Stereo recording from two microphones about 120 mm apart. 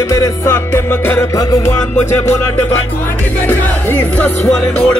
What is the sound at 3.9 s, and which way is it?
Music, 15° left (ahead or behind).